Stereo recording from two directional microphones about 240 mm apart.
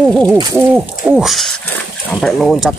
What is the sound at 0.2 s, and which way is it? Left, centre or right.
Bird, centre.